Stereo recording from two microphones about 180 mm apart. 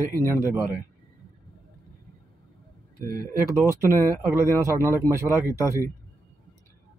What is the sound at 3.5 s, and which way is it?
A man's voice, 15° right (ahead or behind).